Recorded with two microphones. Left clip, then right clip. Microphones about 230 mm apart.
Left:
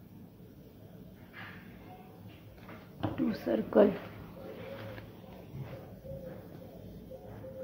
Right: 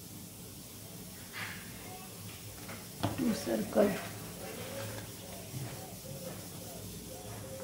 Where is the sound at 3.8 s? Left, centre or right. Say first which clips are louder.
Left 4 dB; left.